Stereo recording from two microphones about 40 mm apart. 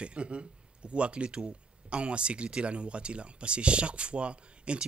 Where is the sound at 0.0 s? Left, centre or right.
Right.